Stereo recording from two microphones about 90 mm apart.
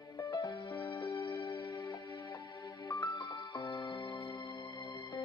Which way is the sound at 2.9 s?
55° left (ahead or behind).